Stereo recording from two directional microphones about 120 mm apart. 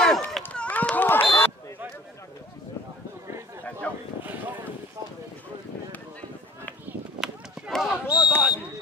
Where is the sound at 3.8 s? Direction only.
10° left (ahead or behind).